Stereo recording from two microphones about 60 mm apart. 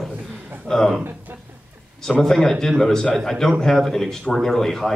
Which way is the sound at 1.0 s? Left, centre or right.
Right.